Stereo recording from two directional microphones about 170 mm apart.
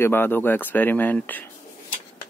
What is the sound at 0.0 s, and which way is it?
Speech, 10° left (ahead or behind).